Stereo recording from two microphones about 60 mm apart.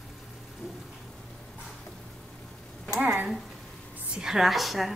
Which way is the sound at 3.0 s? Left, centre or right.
Right.